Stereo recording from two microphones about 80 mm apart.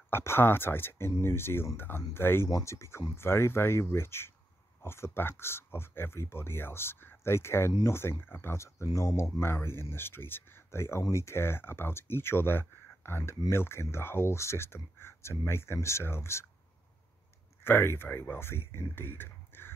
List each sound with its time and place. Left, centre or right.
0.1 s speech: left
17.6 s speech: left